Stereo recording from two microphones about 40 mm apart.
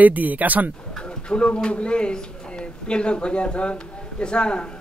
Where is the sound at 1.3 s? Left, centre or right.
Left.